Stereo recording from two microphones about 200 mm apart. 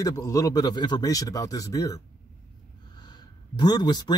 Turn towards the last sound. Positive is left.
turn(degrees=20)  # may be behind; listen again after turning